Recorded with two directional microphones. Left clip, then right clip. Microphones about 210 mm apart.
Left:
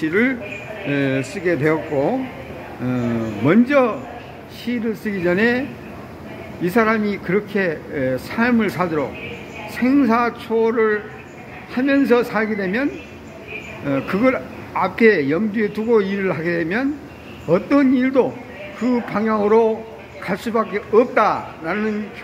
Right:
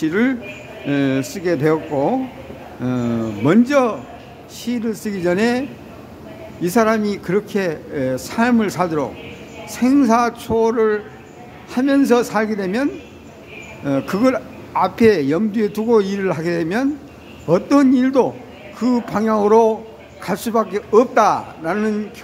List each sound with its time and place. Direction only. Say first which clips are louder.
0.0 s a man's voice: even; 25° right (ahead or behind)